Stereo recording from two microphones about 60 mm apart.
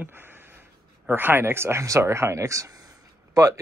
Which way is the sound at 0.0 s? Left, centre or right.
Right.